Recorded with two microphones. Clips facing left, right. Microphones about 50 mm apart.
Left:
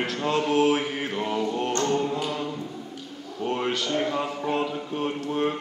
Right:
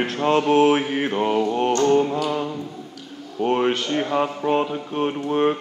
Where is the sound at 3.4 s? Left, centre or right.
Right.